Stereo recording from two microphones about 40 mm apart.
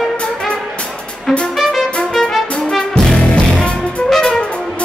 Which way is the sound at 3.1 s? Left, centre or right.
Left.